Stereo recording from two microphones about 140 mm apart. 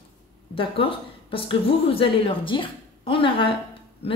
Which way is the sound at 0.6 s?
40° left (ahead or behind).